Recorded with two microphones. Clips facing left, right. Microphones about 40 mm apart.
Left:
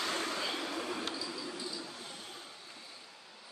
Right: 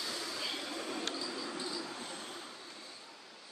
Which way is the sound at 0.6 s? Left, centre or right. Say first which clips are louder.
Left 2 dB; left.